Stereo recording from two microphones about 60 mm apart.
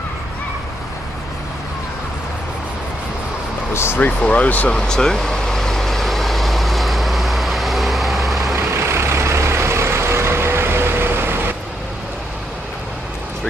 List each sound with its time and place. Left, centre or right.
3.7 s speech: left
4.0 s speech: left
4.7 s vehicle: centre
8.5 s vehicle: right